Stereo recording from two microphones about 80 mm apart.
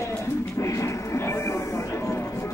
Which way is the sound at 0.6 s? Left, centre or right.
Left.